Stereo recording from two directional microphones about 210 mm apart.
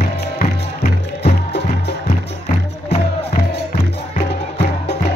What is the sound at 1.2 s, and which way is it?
Music, 50° left (ahead or behind).